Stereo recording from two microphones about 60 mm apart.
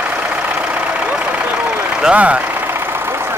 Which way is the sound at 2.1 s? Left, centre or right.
Right.